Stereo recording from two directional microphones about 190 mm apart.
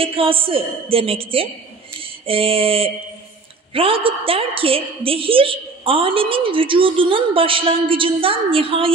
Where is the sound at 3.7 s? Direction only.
30° right (ahead or behind).